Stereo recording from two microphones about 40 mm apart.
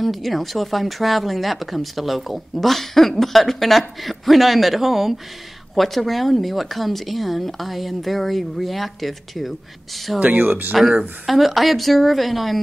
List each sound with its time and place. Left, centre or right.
0.0 s speech: centre
10.4 s speech: right
10.7 s speech: centre